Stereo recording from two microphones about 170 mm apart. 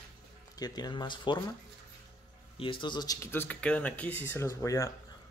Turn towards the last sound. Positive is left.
turn(degrees=20)  # may be behind; listen again after turning